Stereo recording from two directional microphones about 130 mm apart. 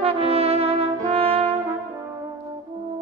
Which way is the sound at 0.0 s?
50° right (ahead or behind).